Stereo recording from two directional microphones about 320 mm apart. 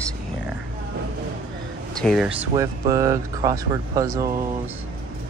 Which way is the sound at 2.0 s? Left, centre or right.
Centre.